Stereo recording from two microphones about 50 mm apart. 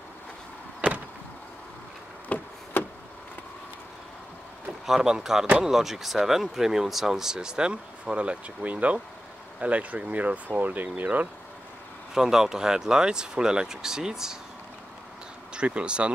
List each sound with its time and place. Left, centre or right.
0.7 s vehicle: right
2.2 s a sound: left
4.8 s speech: centre; by 11.2 s right
12.1 s speech: centre
15.5 s speech: right